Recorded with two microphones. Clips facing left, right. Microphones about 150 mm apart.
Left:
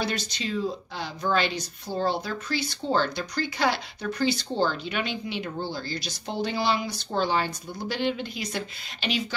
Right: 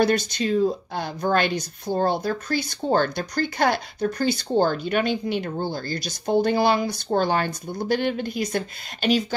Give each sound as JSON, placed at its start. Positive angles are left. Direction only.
{"t": 0.0, "sound": "speech", "side_deg": -50}